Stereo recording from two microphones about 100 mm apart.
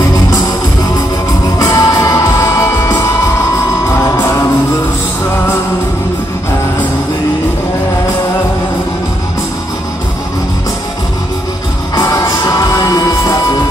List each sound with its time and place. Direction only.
1.6 s music: 35° left (ahead or behind)
11.9 s music: 35° left (ahead or behind)